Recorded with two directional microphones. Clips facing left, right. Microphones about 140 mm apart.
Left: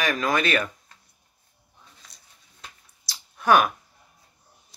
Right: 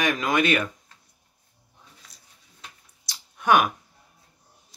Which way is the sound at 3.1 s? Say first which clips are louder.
Left 1 dB; 20° right (ahead or behind).